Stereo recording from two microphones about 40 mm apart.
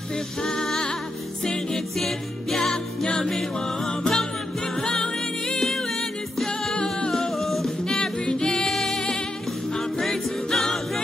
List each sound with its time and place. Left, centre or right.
0.4 s music: centre
8.0 s music: centre